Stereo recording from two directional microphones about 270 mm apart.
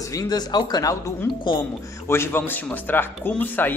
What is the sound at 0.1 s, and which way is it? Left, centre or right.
Speech, centre.